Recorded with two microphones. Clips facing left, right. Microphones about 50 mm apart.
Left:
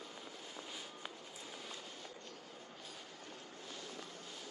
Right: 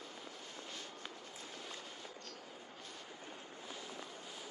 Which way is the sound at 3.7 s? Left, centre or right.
Centre.